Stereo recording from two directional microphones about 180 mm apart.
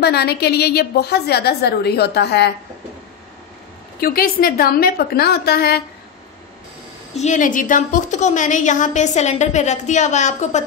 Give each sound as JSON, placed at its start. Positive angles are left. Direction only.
{"t": 0.0, "sound": "a woman's voice", "side_deg": 65}
{"t": 4.0, "sound": "a woman's voice", "side_deg": 55}
{"t": 7.2, "sound": "a woman's voice", "side_deg": 45}